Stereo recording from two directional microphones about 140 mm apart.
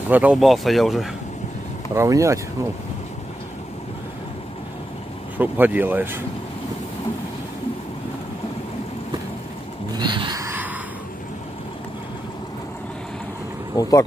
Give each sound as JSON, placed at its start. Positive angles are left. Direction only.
{"t": 0.1, "sound": "speech", "side_deg": -10}
{"t": 0.4, "sound": "speech", "side_deg": 0}
{"t": 2.0, "sound": "speech", "side_deg": -20}
{"t": 5.4, "sound": "speech", "side_deg": -15}
{"t": 9.9, "sound": "a sound", "side_deg": -35}
{"t": 10.4, "sound": "a sound", "side_deg": -15}
{"t": 13.7, "sound": "speech", "side_deg": 25}